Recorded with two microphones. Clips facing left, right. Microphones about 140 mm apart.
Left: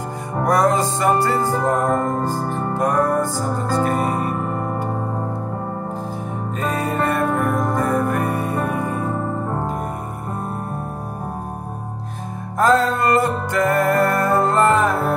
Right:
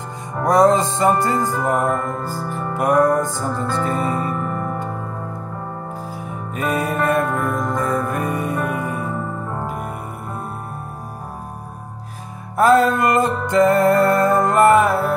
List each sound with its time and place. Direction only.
0.5 s music: 20° right (ahead or behind)
1.8 s music: 35° left (ahead or behind)
2.5 s music: 15° right (ahead or behind)
3.7 s music: 45° left (ahead or behind)
6.6 s music: 15° right (ahead or behind)
7.3 s music: 20° left (ahead or behind)
8.1 s music: 15° right (ahead or behind)
12.5 s music: 10° right (ahead or behind)